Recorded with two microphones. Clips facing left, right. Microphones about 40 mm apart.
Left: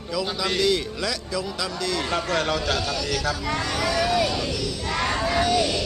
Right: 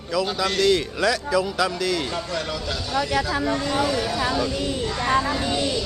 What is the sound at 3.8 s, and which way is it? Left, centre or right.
Speech, left.